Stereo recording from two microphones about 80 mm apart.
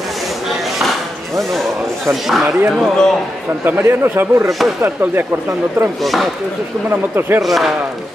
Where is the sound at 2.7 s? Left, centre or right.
Centre.